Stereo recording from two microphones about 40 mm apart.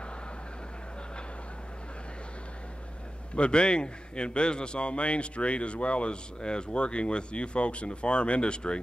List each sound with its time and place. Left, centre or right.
3.3 s a man's voice: left